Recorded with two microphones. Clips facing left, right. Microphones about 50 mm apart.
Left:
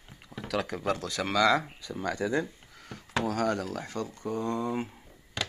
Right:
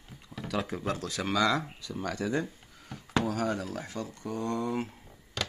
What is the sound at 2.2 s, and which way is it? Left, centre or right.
Speech, left.